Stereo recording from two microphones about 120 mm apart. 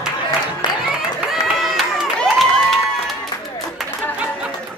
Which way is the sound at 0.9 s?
5° right (ahead or behind).